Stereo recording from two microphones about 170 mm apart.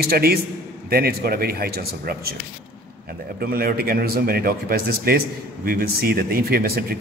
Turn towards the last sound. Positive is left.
turn(degrees=-65)  # may be behind; listen again after turning